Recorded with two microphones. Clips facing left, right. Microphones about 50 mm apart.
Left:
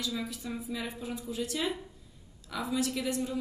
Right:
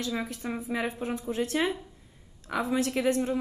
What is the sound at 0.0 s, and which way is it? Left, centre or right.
A woman's voice, right.